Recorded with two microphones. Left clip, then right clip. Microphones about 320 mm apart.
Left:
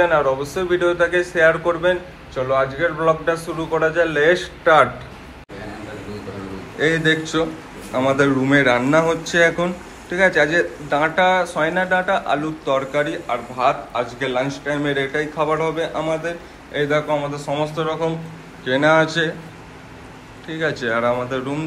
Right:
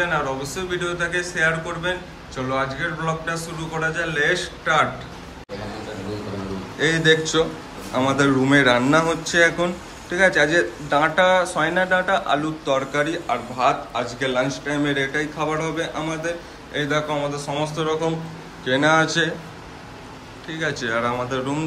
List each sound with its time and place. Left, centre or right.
0.0 s speech: centre
6.8 s speech: centre
20.4 s speech: centre